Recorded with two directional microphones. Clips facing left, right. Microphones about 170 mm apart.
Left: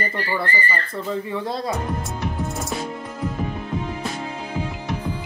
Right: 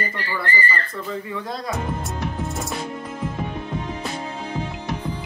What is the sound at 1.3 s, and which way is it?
Speech, 30° left (ahead or behind).